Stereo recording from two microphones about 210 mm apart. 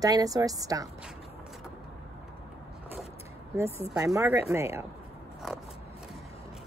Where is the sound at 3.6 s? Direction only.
10° left (ahead or behind).